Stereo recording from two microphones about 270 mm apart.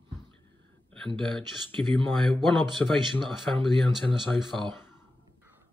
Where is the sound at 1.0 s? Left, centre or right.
Centre.